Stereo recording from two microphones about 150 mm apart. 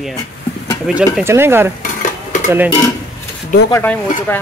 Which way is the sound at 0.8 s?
10° right (ahead or behind).